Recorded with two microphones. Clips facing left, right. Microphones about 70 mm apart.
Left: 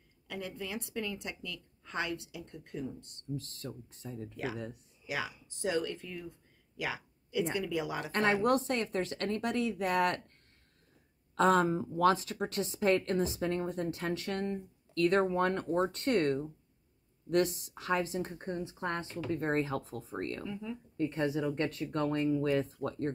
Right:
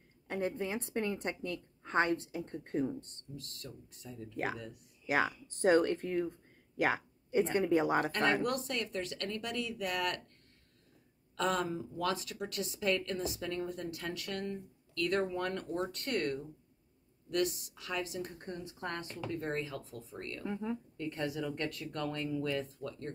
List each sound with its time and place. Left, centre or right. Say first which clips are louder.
0.3 s a woman's voice: right 4 dB; right
3.3 s speech: left 3 dB; left
5.0 s a woman's voice: right 6 dB; right
6.8 s a sound: right 6 dB; right
7.5 s a woman's voice: right 5 dB; right
8.4 s a woman's voice: left 6 dB; left
11.3 s a woman's voice: left 7 dB; left
20.4 s a woman's voice: right 2 dB; right
21.0 s a woman's voice: left 7 dB; left